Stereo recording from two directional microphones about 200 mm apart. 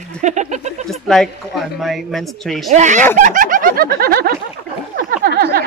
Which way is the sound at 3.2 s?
40° right (ahead or behind).